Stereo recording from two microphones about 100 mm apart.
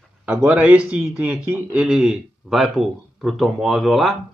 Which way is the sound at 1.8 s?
5° right (ahead or behind).